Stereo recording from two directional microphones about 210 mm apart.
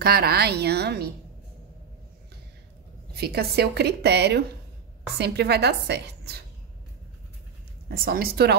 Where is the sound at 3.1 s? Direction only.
50° right (ahead or behind).